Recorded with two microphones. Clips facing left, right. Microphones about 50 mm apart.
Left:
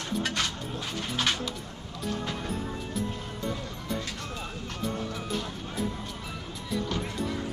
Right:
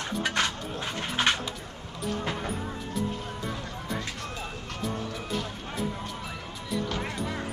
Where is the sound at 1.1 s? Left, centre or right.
Right.